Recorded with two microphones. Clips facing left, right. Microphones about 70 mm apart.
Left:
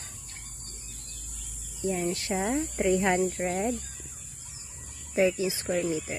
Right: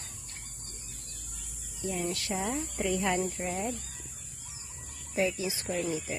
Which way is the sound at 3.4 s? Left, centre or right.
Left.